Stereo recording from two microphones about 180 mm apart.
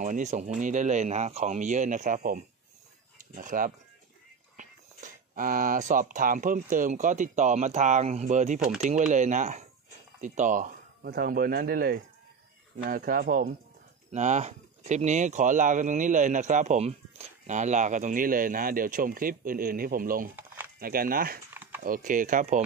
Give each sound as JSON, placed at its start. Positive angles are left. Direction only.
{"t": 0.0, "sound": "speech", "side_deg": -40}
{"t": 14.1, "sound": "speech", "side_deg": -40}
{"t": 20.3, "sound": "a sound", "side_deg": -10}
{"t": 20.8, "sound": "speech", "side_deg": -55}